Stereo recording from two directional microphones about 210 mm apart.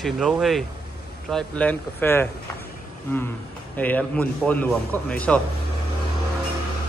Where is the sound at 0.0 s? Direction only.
Centre (ahead or behind).